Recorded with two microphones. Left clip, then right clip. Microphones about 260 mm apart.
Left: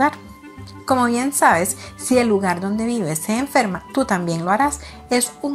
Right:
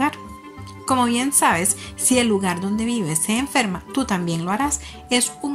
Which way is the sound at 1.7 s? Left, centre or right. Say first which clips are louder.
Left 1 dB; right.